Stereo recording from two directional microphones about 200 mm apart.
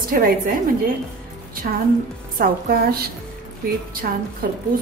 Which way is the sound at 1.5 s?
45° right (ahead or behind).